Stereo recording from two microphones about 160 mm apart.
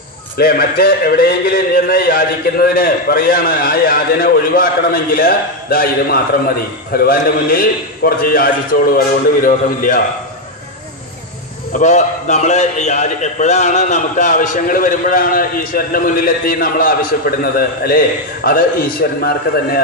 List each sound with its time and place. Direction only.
0.4 s a man's voice: 70° left (ahead or behind)
11.7 s a man's voice: 45° left (ahead or behind); by 19.8 s 65° left (ahead or behind)